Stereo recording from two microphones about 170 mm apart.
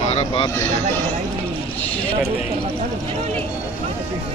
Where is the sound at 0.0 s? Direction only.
35° left (ahead or behind).